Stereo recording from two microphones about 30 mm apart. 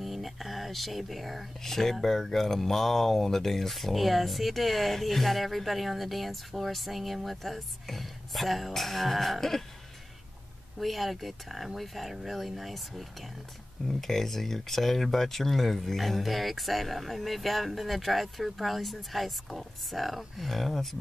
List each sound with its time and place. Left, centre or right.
0.0 s a sound: centre
1.6 s speech: centre
10.8 s speech: centre